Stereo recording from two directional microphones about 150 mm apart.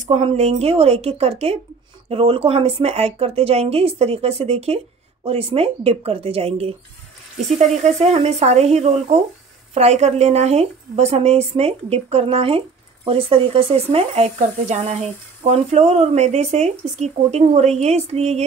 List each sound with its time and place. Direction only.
0.0 s a woman's voice: 50° right (ahead or behind)